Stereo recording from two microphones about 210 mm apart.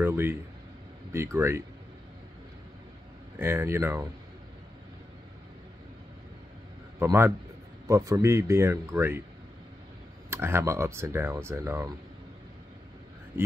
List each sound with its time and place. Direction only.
0.0 s speech: 10° right (ahead or behind)
3.3 s speech: 10° right (ahead or behind)
7.0 s speech: 10° right (ahead or behind)
10.3 s speech: 10° right (ahead or behind)